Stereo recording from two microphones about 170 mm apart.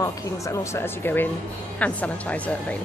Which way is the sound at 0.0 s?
20° left (ahead or behind).